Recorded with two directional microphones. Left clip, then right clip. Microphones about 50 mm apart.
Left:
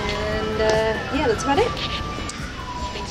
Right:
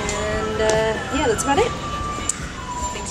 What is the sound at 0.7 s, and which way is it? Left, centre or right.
Speech, centre.